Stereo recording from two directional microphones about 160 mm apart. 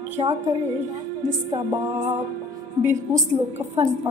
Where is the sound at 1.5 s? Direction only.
15° right (ahead or behind).